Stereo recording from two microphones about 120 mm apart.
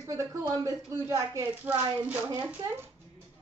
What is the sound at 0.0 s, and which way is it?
A man's voice, 25° right (ahead or behind).